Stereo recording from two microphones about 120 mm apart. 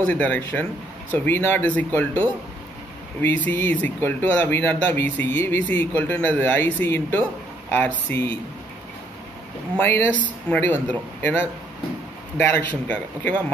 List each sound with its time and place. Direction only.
0.0 s speech: 15° left (ahead or behind)
3.2 s speech: 15° left (ahead or behind)
9.8 s speech: 15° left (ahead or behind)